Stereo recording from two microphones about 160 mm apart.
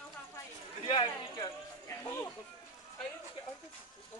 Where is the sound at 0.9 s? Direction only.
30° left (ahead or behind).